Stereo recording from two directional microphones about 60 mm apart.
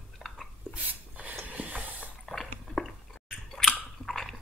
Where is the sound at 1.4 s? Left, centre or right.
Right.